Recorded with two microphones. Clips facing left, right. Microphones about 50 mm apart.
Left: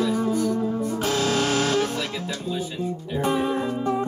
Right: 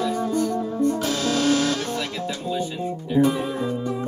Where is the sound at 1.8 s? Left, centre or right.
Centre.